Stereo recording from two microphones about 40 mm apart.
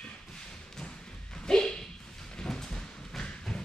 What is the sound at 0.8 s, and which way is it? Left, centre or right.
Thump, centre.